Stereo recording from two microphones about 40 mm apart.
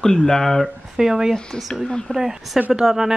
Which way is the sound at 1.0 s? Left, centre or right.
Centre.